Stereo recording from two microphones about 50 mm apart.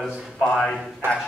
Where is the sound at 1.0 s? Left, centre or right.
Right.